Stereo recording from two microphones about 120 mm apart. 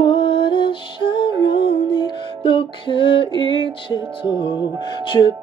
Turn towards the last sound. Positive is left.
turn(degrees=40)  # may be behind; listen again after turning